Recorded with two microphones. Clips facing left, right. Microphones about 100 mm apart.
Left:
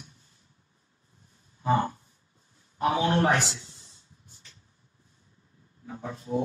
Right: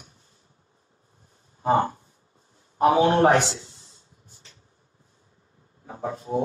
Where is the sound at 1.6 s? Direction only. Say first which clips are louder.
Right 4 dB; 40° right (ahead or behind).